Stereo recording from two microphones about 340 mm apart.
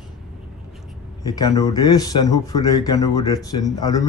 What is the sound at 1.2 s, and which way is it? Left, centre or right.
Speech, centre.